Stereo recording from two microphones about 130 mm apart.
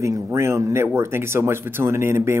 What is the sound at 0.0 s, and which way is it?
Speech, 20° right (ahead or behind).